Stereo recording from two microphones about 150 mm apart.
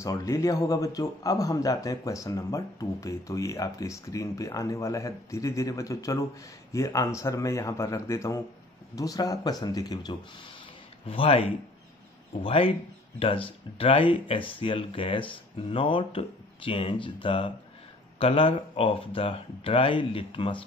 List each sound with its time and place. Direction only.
0.0 s speech: 20° left (ahead or behind)
11.1 s speech: 40° left (ahead or behind)